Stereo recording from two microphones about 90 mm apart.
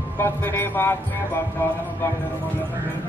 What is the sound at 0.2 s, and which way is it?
Speech, 25° left (ahead or behind).